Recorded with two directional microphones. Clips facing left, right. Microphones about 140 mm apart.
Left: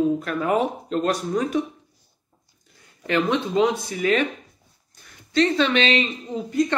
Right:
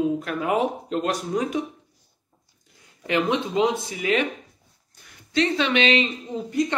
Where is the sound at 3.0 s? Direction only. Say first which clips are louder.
Left 1 dB; 15° right (ahead or behind).